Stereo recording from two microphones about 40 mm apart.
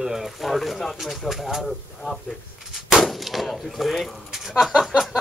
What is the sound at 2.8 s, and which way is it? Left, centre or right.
Gunshot, centre.